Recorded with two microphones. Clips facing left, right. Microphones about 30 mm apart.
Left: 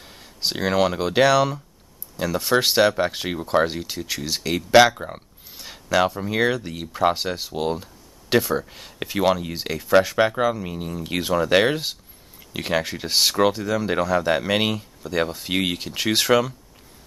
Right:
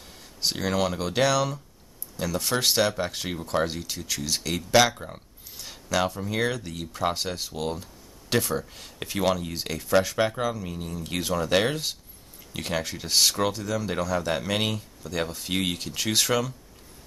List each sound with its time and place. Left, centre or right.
0.0 s speech: centre